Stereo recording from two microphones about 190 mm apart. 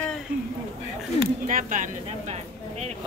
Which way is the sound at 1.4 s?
45° right (ahead or behind).